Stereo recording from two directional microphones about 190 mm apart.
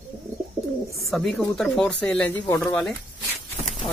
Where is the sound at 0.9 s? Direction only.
Centre (ahead or behind).